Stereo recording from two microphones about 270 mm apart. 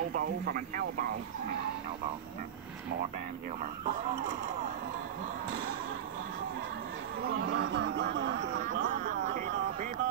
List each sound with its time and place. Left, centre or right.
0.1 s speech: right
7.5 s speech: right